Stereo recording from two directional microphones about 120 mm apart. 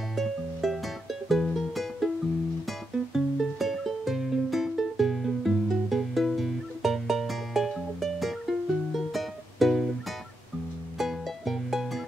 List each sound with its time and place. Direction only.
0.1 s music: centre (ahead or behind)
3.1 s music: centre (ahead or behind)
11.0 s music: centre (ahead or behind)